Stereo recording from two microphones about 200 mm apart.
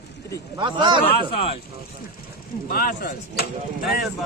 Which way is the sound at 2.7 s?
45° left (ahead or behind).